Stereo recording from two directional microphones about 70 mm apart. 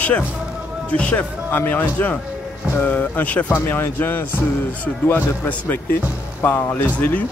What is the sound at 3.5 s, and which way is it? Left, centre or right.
Speech, left.